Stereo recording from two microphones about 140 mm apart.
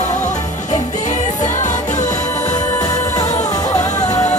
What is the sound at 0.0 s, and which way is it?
Music, 60° left (ahead or behind).